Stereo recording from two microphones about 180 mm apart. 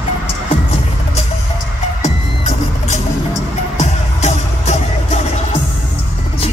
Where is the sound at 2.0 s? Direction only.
40° left (ahead or behind).